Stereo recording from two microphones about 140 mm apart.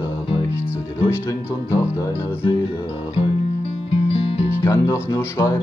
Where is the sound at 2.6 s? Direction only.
40° left (ahead or behind).